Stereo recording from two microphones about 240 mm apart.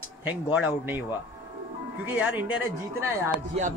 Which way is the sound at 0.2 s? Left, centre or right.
Centre.